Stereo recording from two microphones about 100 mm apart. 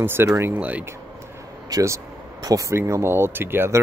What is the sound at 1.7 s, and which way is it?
Speech, 35° right (ahead or behind).